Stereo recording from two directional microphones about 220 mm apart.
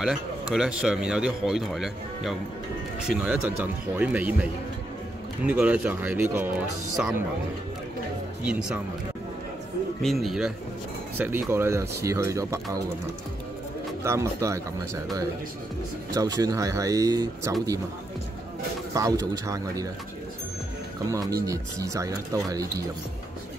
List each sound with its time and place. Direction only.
0.0 s speech: centre (ahead or behind)
10.0 s speech: centre (ahead or behind)
14.0 s speech: 15° right (ahead or behind)
16.1 s speech: 15° right (ahead or behind)
18.9 s speech: 15° right (ahead or behind)
21.1 s speech: 15° right (ahead or behind)